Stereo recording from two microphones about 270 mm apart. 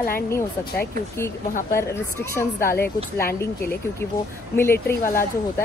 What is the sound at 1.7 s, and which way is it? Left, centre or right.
Speech, centre.